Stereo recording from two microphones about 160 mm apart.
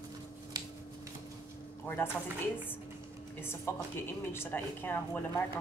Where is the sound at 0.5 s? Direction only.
25° right (ahead or behind).